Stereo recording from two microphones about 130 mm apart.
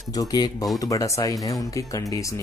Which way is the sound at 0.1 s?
30° left (ahead or behind).